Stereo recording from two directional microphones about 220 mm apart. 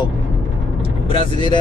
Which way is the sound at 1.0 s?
20° left (ahead or behind).